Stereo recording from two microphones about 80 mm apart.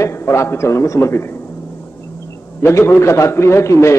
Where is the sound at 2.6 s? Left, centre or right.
Left.